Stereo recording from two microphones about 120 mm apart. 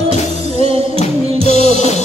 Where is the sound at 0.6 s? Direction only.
55° right (ahead or behind).